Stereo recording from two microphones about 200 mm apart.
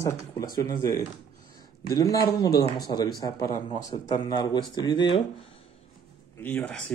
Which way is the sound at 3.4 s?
40° left (ahead or behind).